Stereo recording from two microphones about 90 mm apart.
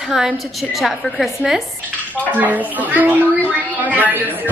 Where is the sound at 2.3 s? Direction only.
15° right (ahead or behind).